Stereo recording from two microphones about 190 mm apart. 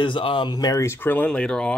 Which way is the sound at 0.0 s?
25° left (ahead or behind).